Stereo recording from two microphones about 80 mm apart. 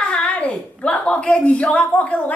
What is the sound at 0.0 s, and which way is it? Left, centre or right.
A woman's voice, centre.